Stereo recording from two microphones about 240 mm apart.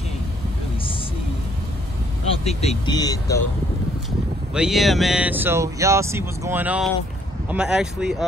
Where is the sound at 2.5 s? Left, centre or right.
Left.